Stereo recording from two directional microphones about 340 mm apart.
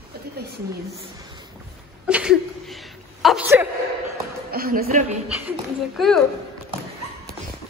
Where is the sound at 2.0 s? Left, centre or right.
Centre.